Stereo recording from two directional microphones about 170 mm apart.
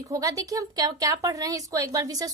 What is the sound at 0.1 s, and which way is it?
A woman's voice, 20° right (ahead or behind).